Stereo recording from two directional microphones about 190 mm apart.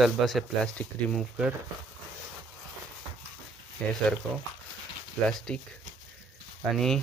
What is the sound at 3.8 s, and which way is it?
Speech, 5° left (ahead or behind).